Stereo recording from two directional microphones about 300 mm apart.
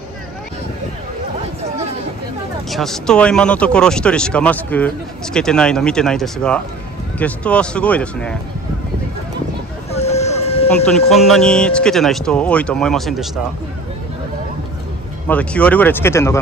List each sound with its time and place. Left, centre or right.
2.7 s speech: centre
9.9 s vehicle: left
11.1 s speech: centre
15.2 s speech: centre